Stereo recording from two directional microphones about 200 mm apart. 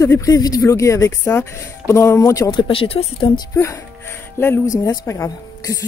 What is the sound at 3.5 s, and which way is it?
Speech, 15° left (ahead or behind).